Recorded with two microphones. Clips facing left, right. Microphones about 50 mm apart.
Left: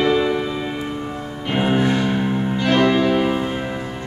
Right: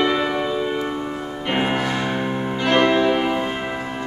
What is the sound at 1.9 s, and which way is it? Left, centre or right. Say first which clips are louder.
Music: left 3 dB; centre.